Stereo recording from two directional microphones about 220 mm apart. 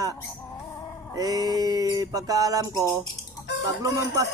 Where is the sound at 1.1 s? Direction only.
15° right (ahead or behind).